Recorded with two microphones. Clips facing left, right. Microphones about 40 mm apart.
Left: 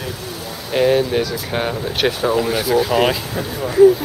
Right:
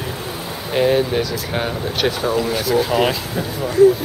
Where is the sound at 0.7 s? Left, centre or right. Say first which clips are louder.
Left 1 dB; centre.